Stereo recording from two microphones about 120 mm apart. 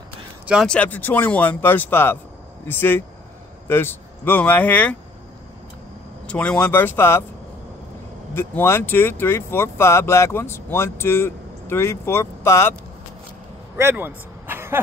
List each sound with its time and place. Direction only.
0.7 s speech: 10° left (ahead or behind)
6.2 s speech: 10° left (ahead or behind)
8.4 s speech: 20° left (ahead or behind)
13.7 s vehicle: 20° right (ahead or behind)